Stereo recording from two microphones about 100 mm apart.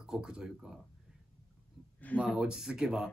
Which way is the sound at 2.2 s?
10° right (ahead or behind).